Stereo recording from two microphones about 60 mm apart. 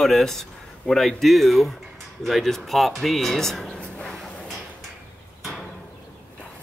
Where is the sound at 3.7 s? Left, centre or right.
Centre.